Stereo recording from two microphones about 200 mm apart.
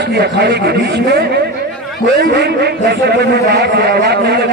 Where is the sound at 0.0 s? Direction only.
55° right (ahead or behind).